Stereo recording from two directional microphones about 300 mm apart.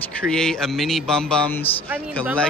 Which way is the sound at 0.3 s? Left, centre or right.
Centre.